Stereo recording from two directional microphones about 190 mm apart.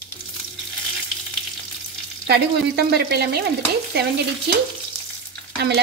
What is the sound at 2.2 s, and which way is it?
Speech, 60° right (ahead or behind).